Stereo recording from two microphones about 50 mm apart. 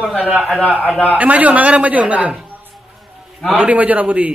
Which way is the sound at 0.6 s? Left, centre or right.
Left.